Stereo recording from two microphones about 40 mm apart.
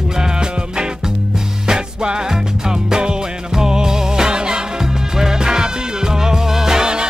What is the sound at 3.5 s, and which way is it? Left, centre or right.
Music, centre.